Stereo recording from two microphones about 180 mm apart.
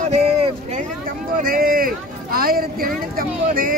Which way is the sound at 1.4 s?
50° right (ahead or behind).